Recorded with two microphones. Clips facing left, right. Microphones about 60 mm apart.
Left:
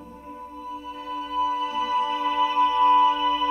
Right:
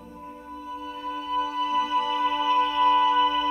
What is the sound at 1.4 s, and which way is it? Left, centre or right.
Music, left.